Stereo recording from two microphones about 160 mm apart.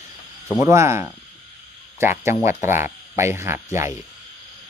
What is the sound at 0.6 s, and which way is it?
Speech, 20° right (ahead or behind).